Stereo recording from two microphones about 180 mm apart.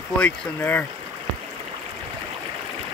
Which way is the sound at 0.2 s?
10° left (ahead or behind).